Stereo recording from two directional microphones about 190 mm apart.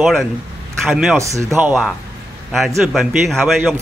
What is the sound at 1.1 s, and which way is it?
Speech, 15° right (ahead or behind).